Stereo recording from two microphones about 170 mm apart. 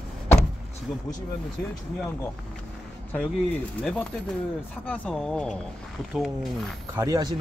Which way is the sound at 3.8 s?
10° left (ahead or behind).